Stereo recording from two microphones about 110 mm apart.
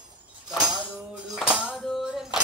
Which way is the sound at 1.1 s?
10° right (ahead or behind).